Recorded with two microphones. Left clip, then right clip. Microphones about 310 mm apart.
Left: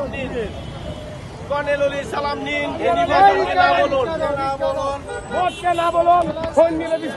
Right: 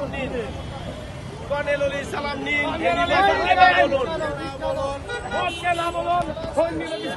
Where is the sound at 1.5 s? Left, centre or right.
Centre.